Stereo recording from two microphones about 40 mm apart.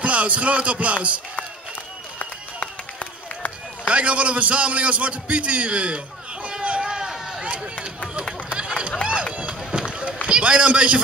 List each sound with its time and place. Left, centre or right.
0.0 s speech: right
2.1 s run: left
3.8 s a man's voice: right
6.9 s run: centre
7.4 s chop: right
8.5 s run: centre
10.2 s a man's voice: right